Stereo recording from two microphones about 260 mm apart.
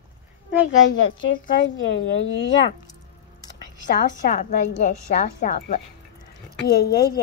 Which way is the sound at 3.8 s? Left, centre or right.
Left.